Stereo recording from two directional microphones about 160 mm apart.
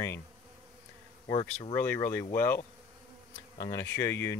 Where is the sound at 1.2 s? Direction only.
20° left (ahead or behind).